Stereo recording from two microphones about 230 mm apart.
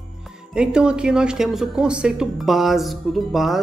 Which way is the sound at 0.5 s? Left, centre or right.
Centre.